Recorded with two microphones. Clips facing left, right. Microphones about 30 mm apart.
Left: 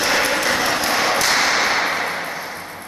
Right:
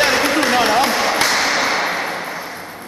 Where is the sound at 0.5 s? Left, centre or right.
Centre.